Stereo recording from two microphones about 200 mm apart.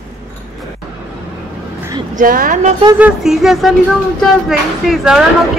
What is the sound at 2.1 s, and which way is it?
Speech, 45° right (ahead or behind).